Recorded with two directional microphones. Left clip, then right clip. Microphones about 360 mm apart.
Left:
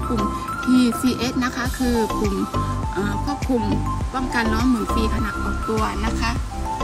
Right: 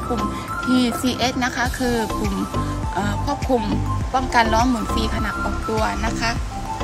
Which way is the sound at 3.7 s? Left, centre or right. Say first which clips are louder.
Right 2 dB; centre.